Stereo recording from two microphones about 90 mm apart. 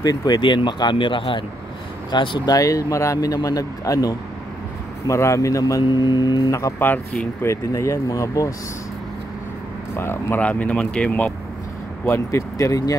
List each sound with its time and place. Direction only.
0.0 s speech: 45° left (ahead or behind)
0.4 s speech: 65° left (ahead or behind)
2.5 s speech: 40° left (ahead or behind)
5.9 s speech: 55° left (ahead or behind)
7.4 s speech: 35° left (ahead or behind)
9.9 s speech: 25° left (ahead or behind)
10.4 s speech: 15° left (ahead or behind)
12.1 s speech: 30° left (ahead or behind)